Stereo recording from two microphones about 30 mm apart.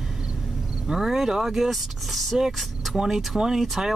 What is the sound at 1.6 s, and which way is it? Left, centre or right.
Speech, centre.